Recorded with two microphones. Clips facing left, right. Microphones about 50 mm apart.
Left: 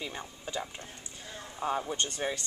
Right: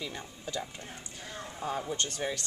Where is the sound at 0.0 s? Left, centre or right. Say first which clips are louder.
Even; left.